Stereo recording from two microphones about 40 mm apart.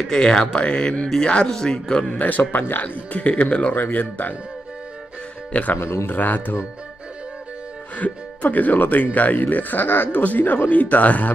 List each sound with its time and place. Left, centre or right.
0.1 s speech: centre
2.1 s speech: left
3.1 s speech: left
3.7 s speech: left
4.0 s speech: left
5.5 s speech: left
5.8 s speech: left
6.1 s speech: left
8.0 s speech: left